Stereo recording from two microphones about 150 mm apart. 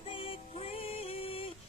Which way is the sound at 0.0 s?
35° left (ahead or behind).